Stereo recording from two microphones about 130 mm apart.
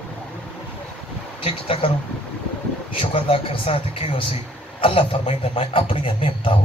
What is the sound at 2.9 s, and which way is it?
A man's voice, 45° left (ahead or behind).